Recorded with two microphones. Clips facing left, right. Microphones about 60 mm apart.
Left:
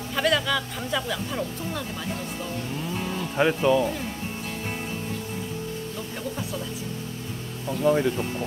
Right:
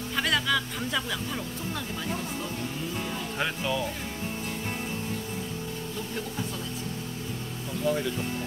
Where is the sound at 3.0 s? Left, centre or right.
Centre.